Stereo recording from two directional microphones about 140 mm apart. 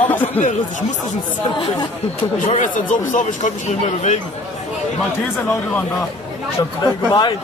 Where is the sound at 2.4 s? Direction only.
65° left (ahead or behind).